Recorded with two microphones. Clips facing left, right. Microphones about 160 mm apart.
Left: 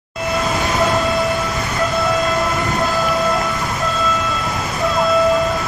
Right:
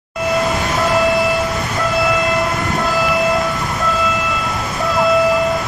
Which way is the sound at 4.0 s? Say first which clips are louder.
Right 1 dB; centre (ahead or behind).